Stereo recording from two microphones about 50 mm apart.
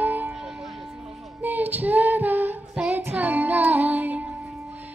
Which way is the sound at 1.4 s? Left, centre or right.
Right.